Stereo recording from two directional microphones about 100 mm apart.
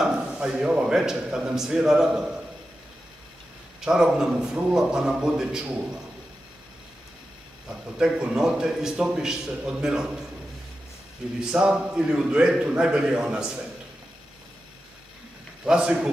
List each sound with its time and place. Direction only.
0.0 s a man's voice: 5° right (ahead or behind)
3.8 s a man's voice: 5° right (ahead or behind)
8.0 s a man's voice: 10° right (ahead or behind)
11.5 s a man's voice: 10° right (ahead or behind)
15.6 s a man's voice: 10° right (ahead or behind)